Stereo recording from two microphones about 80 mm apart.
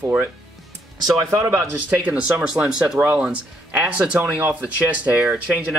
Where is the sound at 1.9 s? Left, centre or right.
Centre.